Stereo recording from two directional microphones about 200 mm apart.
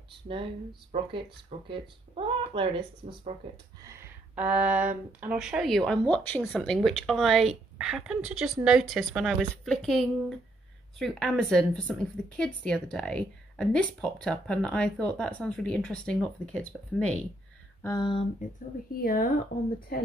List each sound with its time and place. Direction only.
0.1 s speech: 25° right (ahead or behind)
1.7 s speech: 25° right (ahead or behind)
3.8 s a woman's voice: 10° right (ahead or behind); by 17.2 s 5° left (ahead or behind)
17.8 s a sound: 20° left (ahead or behind)
19.0 s speech: 45° left (ahead or behind)